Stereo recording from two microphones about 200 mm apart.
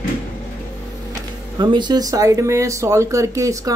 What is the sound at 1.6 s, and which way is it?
Speech, 20° right (ahead or behind).